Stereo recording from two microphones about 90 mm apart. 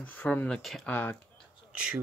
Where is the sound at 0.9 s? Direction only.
20° left (ahead or behind).